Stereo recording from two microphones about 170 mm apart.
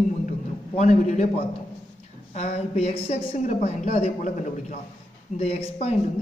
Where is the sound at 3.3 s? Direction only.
50° left (ahead or behind).